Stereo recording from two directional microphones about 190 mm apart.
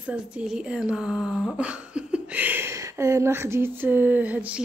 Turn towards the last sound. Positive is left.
turn(degrees=-5)  # may be behind; listen again after turning